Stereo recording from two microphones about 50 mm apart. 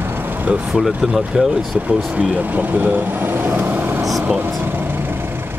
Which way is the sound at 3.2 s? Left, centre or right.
Right.